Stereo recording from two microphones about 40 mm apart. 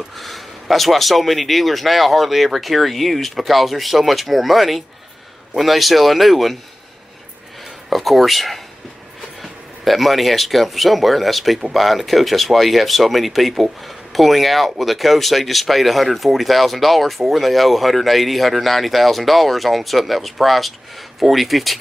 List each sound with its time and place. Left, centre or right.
0.1 s speech: centre
7.9 s speech: centre